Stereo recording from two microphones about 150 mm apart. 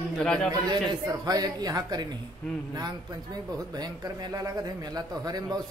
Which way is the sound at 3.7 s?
25° right (ahead or behind).